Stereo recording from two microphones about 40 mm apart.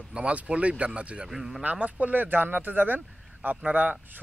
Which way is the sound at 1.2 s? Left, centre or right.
Centre.